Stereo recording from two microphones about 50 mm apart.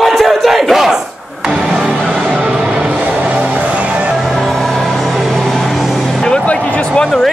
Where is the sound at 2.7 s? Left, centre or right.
Centre.